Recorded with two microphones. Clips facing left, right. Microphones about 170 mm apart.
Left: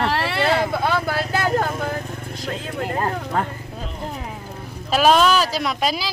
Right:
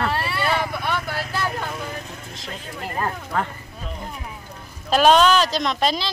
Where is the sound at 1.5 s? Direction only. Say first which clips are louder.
Left 7 dB; 45° left (ahead or behind).